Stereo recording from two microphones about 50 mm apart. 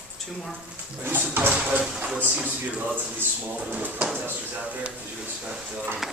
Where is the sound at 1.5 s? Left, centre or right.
Right.